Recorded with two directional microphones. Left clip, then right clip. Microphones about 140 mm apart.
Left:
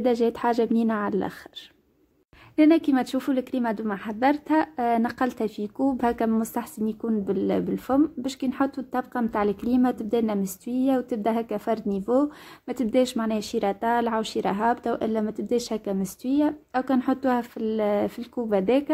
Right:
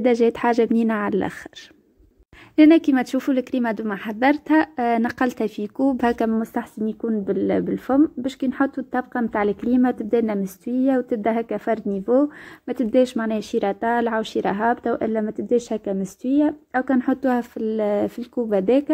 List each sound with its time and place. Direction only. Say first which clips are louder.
0.0 s speech: right 5 dB; 30° right (ahead or behind)
2.5 s a woman's voice: right 5 dB; 35° right (ahead or behind)